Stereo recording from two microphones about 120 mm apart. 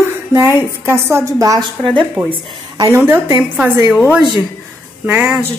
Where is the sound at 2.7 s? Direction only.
25° right (ahead or behind).